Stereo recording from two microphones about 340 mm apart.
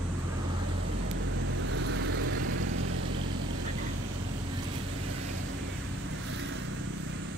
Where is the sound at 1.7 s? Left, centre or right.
Right.